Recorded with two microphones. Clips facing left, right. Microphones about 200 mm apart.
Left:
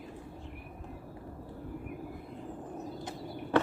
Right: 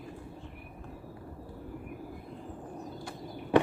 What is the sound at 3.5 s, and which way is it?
Walk, 15° right (ahead or behind).